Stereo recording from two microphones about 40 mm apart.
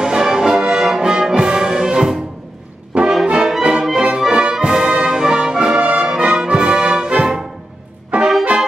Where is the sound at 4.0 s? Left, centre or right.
Right.